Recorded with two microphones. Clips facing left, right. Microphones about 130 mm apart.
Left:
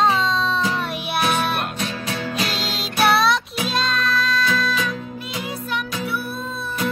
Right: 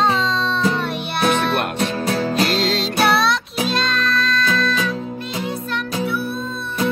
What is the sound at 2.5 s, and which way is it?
Music, centre (ahead or behind).